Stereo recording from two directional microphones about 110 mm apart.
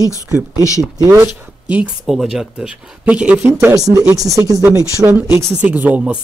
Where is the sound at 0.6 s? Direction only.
30° left (ahead or behind).